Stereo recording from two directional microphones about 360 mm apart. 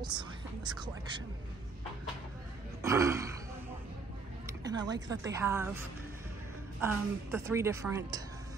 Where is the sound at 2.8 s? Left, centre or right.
Centre.